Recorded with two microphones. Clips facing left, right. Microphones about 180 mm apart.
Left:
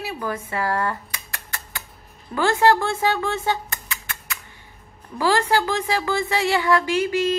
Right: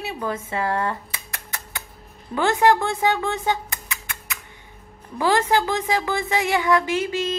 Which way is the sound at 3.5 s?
20° right (ahead or behind).